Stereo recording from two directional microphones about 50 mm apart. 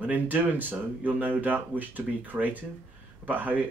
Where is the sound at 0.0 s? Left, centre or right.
Right.